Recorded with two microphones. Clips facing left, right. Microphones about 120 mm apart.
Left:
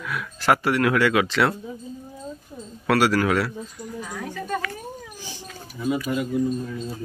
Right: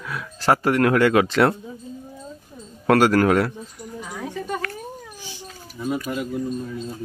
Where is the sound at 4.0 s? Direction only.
20° right (ahead or behind).